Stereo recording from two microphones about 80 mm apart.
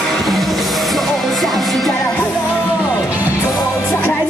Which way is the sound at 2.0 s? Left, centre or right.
Left.